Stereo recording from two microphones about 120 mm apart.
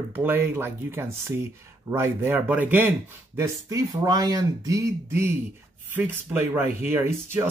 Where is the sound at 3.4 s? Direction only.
25° right (ahead or behind).